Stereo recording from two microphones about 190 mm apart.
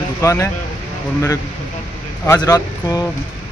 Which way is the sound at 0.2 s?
15° left (ahead or behind).